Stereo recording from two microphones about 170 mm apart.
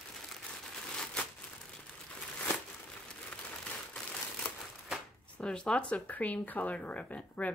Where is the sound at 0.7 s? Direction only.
5° left (ahead or behind).